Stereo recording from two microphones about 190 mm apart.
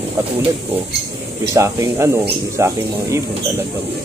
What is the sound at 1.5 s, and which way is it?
Speech, 15° right (ahead or behind).